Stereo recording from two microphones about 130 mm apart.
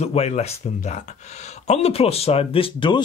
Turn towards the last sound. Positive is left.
turn(degrees=40)  # may be behind; listen again after turning